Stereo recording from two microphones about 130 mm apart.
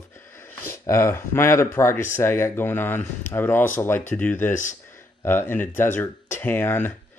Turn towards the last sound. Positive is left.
turn(degrees=15)  # may be behind; listen again after turning